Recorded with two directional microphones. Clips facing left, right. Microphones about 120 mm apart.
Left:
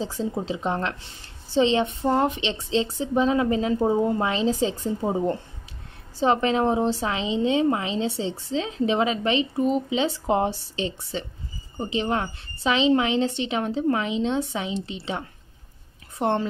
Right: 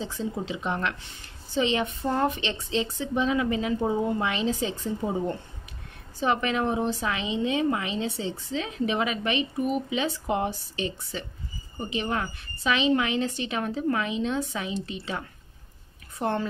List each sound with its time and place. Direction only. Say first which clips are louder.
0.0 s a woman's voice: left 4 dB; 35° left (ahead or behind)